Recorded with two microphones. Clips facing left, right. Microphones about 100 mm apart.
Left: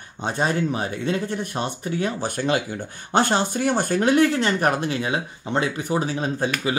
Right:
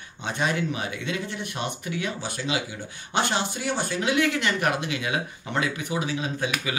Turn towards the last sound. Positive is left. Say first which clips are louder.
# left 4 dB
turn(degrees=40)  # may be behind; listen again after turning